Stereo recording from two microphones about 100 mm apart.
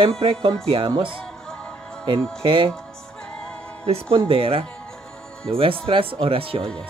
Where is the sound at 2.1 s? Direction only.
60° right (ahead or behind).